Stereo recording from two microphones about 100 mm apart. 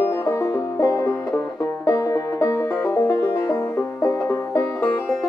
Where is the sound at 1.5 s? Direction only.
35° left (ahead or behind).